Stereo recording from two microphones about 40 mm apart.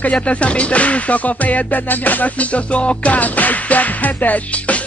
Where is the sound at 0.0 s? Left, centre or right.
Left.